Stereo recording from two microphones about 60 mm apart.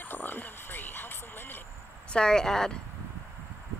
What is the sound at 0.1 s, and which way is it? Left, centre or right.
Frog, left.